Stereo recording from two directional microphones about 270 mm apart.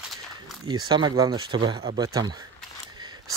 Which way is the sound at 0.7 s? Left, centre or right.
Centre.